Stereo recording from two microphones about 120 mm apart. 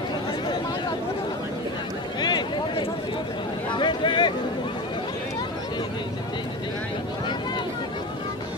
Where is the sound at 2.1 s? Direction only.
40° left (ahead or behind).